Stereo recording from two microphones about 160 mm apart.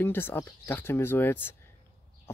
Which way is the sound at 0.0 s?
10° left (ahead or behind).